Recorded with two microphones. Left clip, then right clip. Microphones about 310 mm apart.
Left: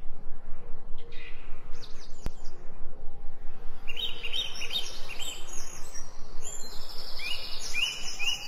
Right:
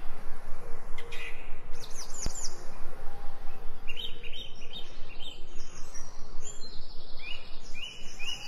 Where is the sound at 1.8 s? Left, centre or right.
Right.